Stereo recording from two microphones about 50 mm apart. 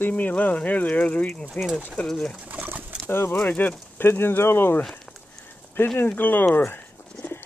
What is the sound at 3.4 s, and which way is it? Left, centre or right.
Speech, left.